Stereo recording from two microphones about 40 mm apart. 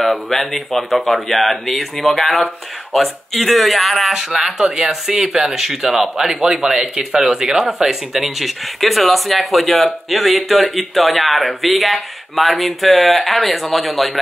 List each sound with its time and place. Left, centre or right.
0.0 s speech: centre
4.1 s speech: centre